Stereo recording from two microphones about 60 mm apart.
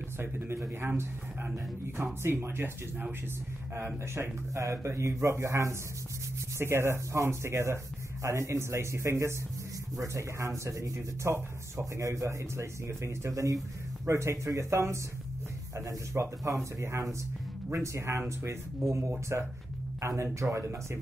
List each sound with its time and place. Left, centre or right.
0.2 s a man's voice: right
4.6 s speech: right
6.6 s speech: right
13.3 s speech: right
14.0 s speech: right
17.6 s speech: right